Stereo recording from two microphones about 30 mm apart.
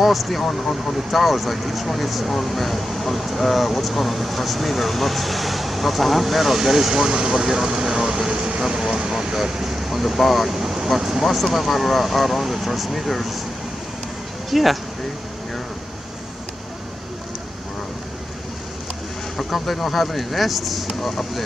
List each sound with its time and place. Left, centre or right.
0.0 s speech: centre
14.5 s speech: centre
19.5 s speech: centre